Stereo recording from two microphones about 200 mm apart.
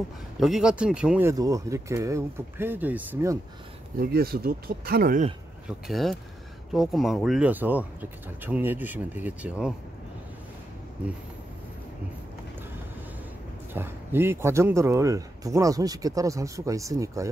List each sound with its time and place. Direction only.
0.4 s speech: centre (ahead or behind)
1.3 s speech: 15° right (ahead or behind)
4.0 s speech: 50° right (ahead or behind)
5.7 s speech: centre (ahead or behind)
13.7 s speech: 10° right (ahead or behind)